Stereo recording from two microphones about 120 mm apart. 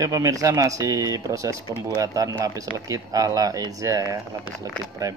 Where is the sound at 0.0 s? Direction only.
30° right (ahead or behind).